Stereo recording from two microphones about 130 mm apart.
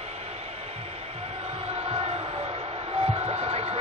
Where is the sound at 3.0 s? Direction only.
50° right (ahead or behind).